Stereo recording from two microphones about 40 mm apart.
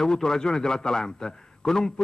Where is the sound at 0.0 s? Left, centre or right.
Centre.